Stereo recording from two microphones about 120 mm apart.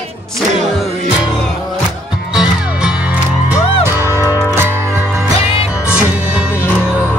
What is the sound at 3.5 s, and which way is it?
Music, 20° right (ahead or behind).